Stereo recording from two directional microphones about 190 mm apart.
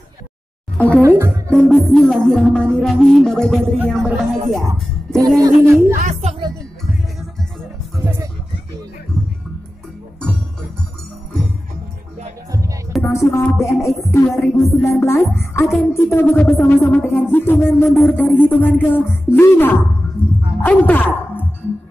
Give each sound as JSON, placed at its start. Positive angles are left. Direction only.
{"t": 0.7, "sound": "speech", "side_deg": 10}
{"t": 1.0, "sound": "speech", "side_deg": -15}
{"t": 1.5, "sound": "music", "side_deg": 5}
{"t": 5.2, "sound": "speech", "side_deg": -15}
{"t": 5.9, "sound": "music", "side_deg": -40}
{"t": 8.0, "sound": "music", "side_deg": -15}
{"t": 13.0, "sound": "music", "side_deg": 15}
{"t": 20.6, "sound": "speech", "side_deg": 10}